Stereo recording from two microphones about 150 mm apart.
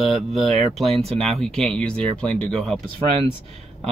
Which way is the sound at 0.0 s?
Centre (ahead or behind).